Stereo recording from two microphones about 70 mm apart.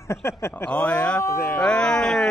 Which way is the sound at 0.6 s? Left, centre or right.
Left.